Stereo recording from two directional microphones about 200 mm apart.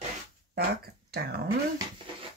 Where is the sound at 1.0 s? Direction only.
50° right (ahead or behind).